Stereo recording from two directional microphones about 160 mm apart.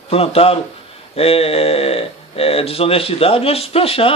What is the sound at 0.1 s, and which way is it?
Speech, 40° left (ahead or behind).